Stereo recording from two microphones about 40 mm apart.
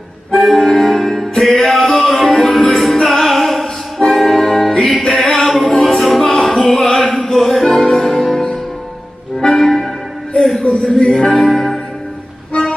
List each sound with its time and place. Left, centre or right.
0.5 s music: centre
10.6 s a sound: left
11.0 s music: centre
11.4 s music: centre